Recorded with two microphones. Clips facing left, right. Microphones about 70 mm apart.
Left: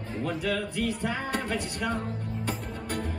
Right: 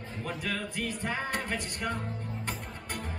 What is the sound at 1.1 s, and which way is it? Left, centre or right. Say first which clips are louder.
Music: left 2 dB; right.